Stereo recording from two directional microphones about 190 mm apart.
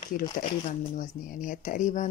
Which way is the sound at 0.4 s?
45° left (ahead or behind).